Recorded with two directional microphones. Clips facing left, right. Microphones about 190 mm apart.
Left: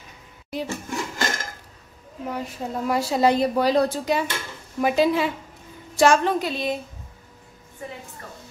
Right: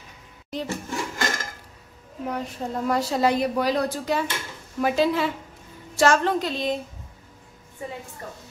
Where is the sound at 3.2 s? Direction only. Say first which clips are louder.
Left 5 dB; 25° left (ahead or behind).